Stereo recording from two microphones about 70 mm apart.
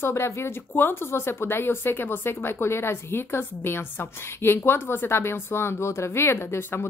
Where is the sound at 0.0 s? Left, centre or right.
Left.